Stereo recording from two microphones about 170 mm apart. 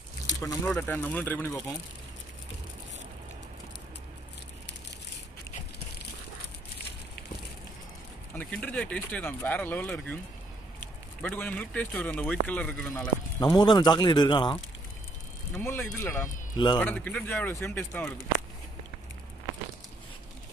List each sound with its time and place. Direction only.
0.3 s a sound: 20° left (ahead or behind)
0.7 s speech: 10° left (ahead or behind)
8.4 s speech: 10° left (ahead or behind)
13.4 s a man's voice: 25° left (ahead or behind)
15.5 s speech: 10° left (ahead or behind)
16.5 s a man's voice: 25° left (ahead or behind)
16.8 s speech: 10° left (ahead or behind)